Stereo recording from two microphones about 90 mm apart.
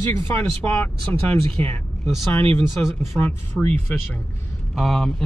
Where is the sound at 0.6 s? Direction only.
15° left (ahead or behind).